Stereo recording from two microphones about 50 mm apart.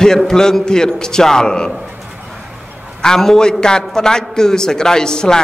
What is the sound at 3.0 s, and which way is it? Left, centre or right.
Speech, centre.